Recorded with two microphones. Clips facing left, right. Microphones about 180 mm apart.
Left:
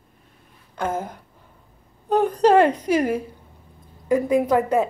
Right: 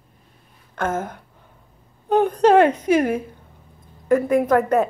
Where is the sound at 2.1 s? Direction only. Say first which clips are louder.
Right 1 dB; 60° right (ahead or behind).